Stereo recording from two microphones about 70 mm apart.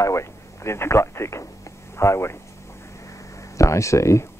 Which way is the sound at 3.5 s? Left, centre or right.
Left.